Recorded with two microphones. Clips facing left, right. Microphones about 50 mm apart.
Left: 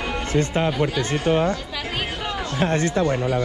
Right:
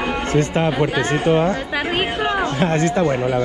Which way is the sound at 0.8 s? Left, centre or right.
Right.